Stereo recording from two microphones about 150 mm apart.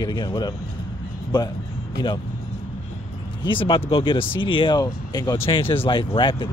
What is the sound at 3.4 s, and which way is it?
Speech, 35° left (ahead or behind).